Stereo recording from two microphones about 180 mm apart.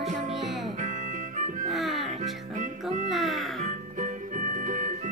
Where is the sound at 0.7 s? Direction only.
45° right (ahead or behind).